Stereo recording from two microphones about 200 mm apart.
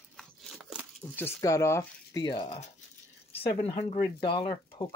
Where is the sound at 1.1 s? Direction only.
15° left (ahead or behind).